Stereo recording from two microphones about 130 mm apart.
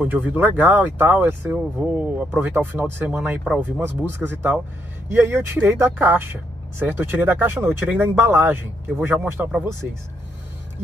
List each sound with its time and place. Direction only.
0.0 s speech: 10° right (ahead or behind)